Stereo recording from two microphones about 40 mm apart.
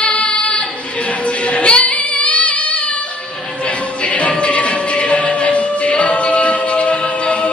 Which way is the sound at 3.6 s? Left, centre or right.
Left.